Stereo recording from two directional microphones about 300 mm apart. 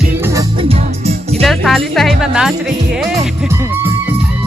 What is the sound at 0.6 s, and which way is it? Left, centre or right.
Music, centre.